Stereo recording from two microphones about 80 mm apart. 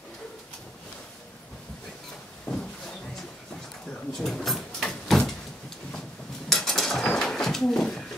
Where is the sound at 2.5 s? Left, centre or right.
Left.